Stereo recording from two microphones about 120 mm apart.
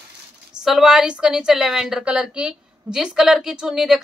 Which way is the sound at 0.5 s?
5° right (ahead or behind).